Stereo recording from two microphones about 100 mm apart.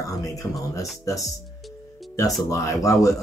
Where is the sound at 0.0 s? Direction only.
35° left (ahead or behind).